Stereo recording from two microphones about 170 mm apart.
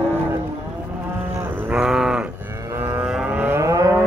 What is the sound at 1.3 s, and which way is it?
Livestock, 10° right (ahead or behind).